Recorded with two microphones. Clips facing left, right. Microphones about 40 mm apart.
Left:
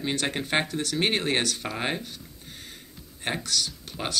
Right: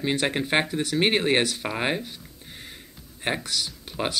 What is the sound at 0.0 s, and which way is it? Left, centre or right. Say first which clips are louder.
Speech: right 4 dB; centre.